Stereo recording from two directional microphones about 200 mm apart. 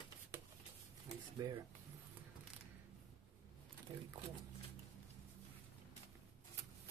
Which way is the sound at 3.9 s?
20° right (ahead or behind).